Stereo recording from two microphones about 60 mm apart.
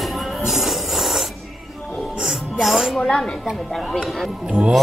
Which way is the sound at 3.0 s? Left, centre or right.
Centre.